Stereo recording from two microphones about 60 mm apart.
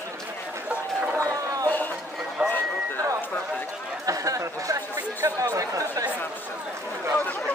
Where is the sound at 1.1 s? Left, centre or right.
Right.